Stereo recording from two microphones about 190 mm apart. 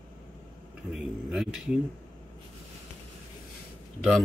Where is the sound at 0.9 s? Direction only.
Centre (ahead or behind).